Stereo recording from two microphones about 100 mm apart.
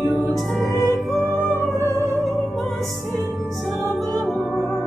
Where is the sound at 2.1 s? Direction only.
Centre (ahead or behind).